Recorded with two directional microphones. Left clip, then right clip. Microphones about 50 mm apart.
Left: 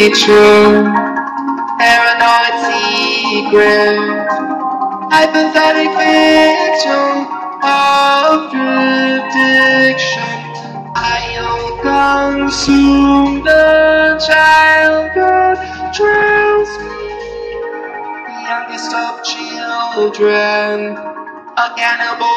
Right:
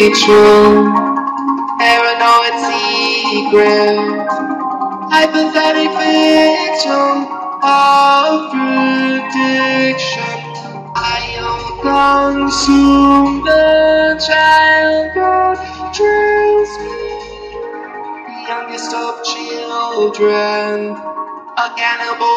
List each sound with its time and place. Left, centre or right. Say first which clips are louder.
0.0 s music: even; centre
14.5 s music: left 1 dB; centre
18.5 s music: left 2 dB; centre